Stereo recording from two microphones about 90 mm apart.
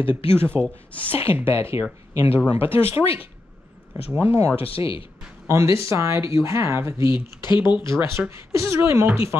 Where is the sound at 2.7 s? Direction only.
90° left.